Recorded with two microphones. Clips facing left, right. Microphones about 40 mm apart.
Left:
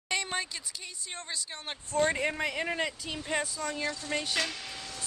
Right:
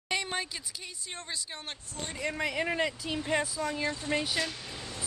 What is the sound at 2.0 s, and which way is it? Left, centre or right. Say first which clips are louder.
Speech: left 13 dB; left.